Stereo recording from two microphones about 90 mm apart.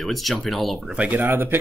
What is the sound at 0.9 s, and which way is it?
Speech, 15° right (ahead or behind).